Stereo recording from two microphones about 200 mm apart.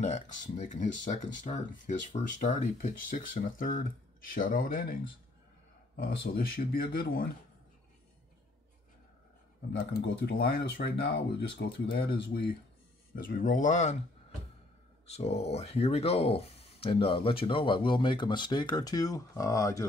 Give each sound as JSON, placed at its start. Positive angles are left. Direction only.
{"t": 0.0, "sound": "speech", "side_deg": 35}
{"t": 5.9, "sound": "speech", "side_deg": 50}
{"t": 10.0, "sound": "speech", "side_deg": 50}
{"t": 15.0, "sound": "speech", "side_deg": 30}